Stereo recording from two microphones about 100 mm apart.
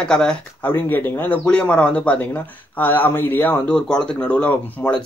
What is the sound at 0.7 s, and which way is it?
Speech, 20° left (ahead or behind).